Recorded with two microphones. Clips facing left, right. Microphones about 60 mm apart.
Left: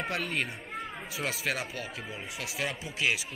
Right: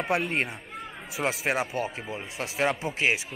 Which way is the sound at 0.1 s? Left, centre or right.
Right.